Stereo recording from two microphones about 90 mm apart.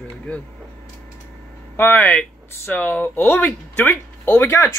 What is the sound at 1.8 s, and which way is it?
Speech, 25° left (ahead or behind).